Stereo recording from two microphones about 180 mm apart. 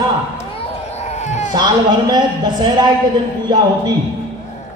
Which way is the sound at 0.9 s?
35° left (ahead or behind).